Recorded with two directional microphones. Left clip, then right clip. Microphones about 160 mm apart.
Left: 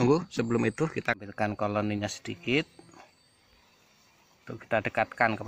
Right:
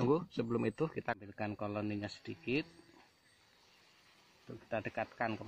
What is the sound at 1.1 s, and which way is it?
Speech, 25° left (ahead or behind).